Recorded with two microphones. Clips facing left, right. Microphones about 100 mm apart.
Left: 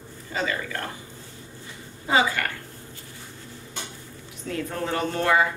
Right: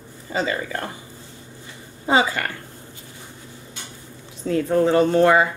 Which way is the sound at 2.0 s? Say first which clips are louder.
Right 3 dB; 25° right (ahead or behind).